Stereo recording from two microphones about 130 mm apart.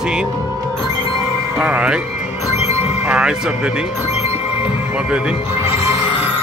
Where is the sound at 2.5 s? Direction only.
55° left (ahead or behind).